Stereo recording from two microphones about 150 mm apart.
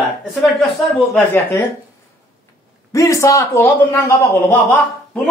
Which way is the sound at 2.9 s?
20° left (ahead or behind).